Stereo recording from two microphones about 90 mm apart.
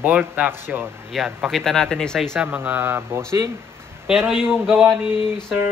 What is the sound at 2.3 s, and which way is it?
Speech, 20° right (ahead or behind).